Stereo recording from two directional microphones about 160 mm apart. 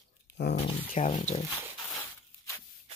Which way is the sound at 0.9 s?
50° left (ahead or behind).